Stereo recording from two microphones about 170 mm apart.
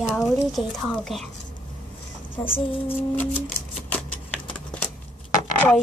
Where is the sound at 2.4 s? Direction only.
30° left (ahead or behind).